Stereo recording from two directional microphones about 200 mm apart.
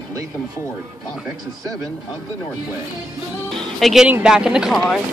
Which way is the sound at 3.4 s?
Centre (ahead or behind).